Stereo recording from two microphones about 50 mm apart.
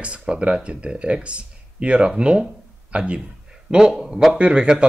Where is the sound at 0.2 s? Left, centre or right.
Centre.